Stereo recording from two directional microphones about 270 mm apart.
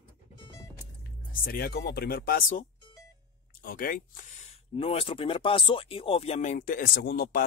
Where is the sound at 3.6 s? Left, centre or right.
Left.